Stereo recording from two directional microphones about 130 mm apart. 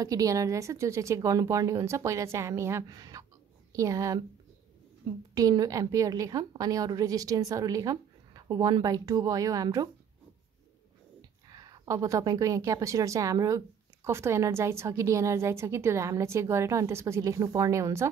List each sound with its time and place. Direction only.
0.0 s a woman's voice: 25° right (ahead or behind)
11.4 s a woman's voice: 30° right (ahead or behind)